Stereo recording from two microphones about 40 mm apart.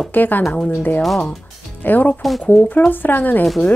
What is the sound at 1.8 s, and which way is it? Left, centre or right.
Speech, left.